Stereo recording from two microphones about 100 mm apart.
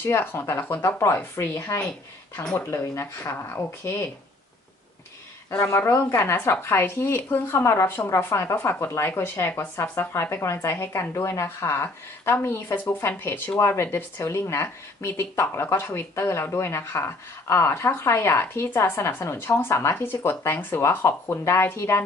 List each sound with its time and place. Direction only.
0.0 s speech: 20° left (ahead or behind)
1.8 s speech: 10° left (ahead or behind)
5.6 s speech: 25° left (ahead or behind)